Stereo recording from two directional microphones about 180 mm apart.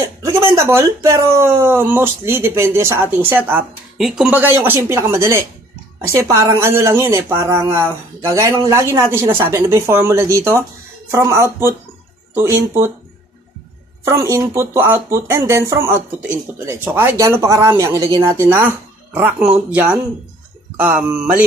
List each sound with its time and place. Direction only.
0.0 s speech: 15° right (ahead or behind)
14.0 s speech: 15° right (ahead or behind)
20.8 s speech: 10° right (ahead or behind)